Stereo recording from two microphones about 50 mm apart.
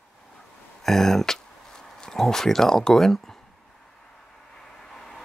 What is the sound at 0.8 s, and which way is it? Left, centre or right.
Speech, centre.